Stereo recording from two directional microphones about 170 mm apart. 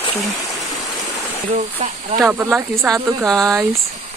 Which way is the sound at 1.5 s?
40° right (ahead or behind).